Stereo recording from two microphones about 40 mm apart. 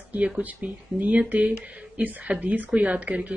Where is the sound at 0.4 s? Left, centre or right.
Right.